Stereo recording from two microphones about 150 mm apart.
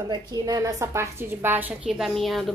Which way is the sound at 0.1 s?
25° right (ahead or behind).